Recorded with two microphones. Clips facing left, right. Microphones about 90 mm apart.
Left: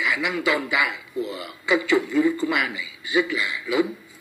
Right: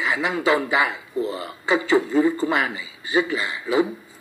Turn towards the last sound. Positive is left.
turn(degrees=-35)  # may be behind; listen again after turning